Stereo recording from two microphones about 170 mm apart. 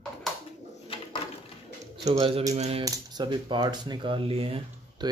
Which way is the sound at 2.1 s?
35° right (ahead or behind).